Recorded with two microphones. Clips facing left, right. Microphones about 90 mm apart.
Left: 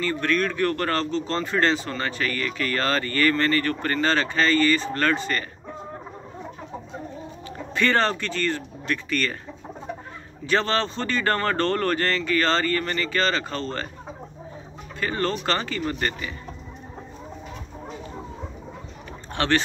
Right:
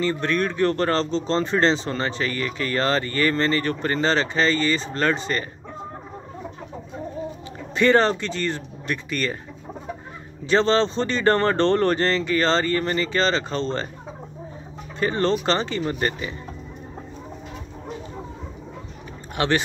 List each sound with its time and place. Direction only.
0.0 s speech: 25° right (ahead or behind)
7.7 s speech: 20° right (ahead or behind)
10.4 s speech: 20° right (ahead or behind)
15.0 s speech: 25° right (ahead or behind)
19.3 s speech: 15° right (ahead or behind)